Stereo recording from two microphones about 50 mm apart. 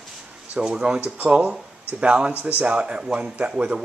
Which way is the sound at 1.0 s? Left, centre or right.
Right.